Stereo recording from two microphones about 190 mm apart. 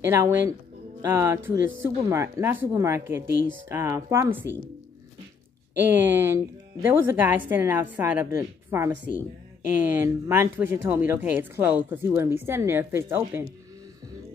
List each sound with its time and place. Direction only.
0.0 s speech: 15° right (ahead or behind)
3.3 s speech: 85° right
3.6 s speech: 15° right (ahead or behind)
5.8 s speech: 10° right (ahead or behind)